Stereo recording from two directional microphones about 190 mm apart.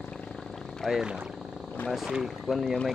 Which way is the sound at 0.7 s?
Centre (ahead or behind).